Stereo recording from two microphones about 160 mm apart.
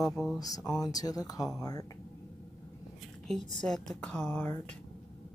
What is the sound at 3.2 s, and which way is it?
Speech, 5° left (ahead or behind).